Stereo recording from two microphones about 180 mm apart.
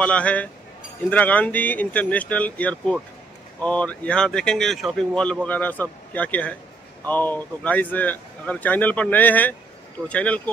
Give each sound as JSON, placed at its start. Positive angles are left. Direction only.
{"t": 0.0, "sound": "speech", "side_deg": 5}